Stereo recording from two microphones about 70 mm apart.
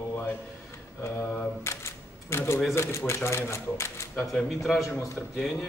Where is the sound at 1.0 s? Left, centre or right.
Left.